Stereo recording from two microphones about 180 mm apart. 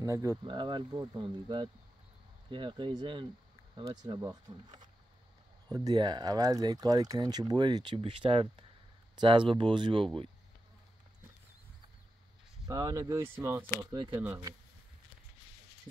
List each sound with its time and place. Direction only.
0.0 s speech: 20° right (ahead or behind)
12.6 s speech: 20° right (ahead or behind)